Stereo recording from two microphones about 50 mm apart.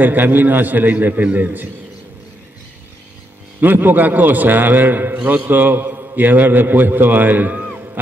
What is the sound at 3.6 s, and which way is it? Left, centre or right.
A man's voice, right.